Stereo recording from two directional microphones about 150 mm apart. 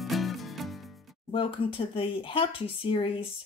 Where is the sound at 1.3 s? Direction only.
35° left (ahead or behind).